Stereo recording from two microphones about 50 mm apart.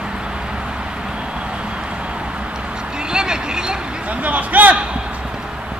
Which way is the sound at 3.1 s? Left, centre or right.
Centre.